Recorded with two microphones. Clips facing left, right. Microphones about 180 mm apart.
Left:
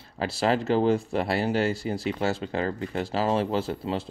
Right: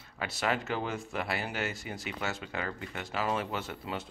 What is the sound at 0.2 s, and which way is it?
Speech, 30° left (ahead or behind).